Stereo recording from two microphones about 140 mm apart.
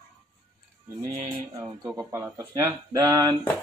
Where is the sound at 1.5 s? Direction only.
25° right (ahead or behind).